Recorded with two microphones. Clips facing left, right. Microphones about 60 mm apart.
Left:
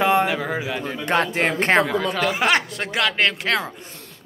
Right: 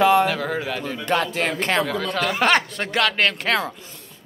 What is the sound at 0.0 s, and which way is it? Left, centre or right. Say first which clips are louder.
Speech: right 2 dB; centre.